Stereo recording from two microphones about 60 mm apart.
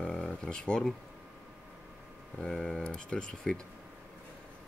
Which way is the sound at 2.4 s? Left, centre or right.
Centre.